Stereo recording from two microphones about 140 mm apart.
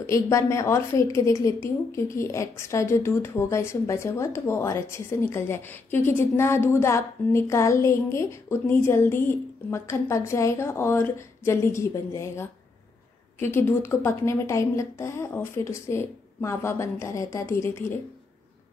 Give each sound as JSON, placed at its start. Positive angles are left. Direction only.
{"t": 0.0, "sound": "a woman's voice", "side_deg": 20}